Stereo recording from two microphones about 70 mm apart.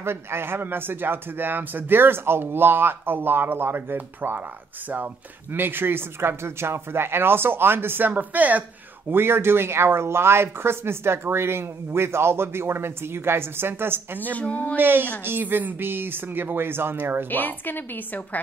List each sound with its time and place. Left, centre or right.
0.0 s speech: right
9.1 s speech: right
14.3 s a woman's voice: left
14.8 s a woman's voice: right
17.3 s a woman's voice: left